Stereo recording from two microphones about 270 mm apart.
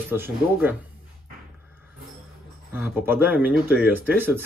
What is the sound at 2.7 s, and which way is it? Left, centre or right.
Speech, centre.